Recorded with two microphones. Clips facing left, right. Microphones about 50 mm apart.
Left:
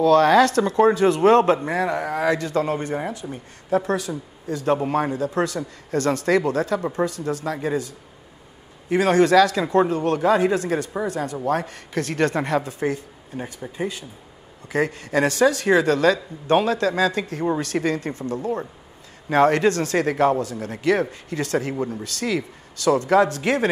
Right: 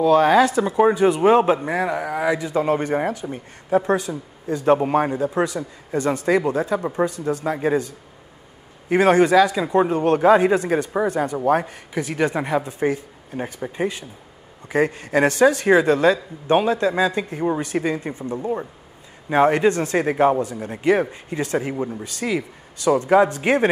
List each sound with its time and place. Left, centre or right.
0.0 s speech: centre
9.8 s speech: right